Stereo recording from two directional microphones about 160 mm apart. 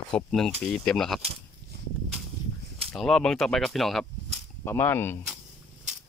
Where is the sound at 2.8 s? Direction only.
Centre (ahead or behind).